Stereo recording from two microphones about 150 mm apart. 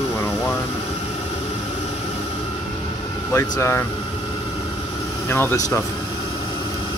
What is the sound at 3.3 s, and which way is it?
Speech, 20° left (ahead or behind).